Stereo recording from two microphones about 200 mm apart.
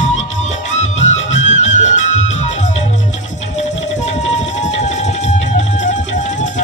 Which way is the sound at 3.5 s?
35° left (ahead or behind).